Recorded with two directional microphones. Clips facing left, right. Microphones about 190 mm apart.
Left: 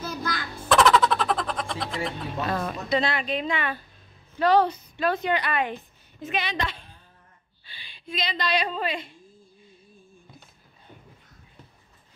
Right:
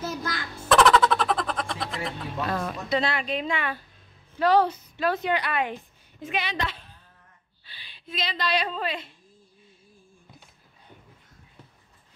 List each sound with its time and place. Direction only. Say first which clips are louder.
0.0 s music: even; 25° right (ahead or behind)
0.7 s a sound: right 1 dB; centre (ahead or behind)
4.4 s a woman's voice: left 1 dB; 5° right (ahead or behind)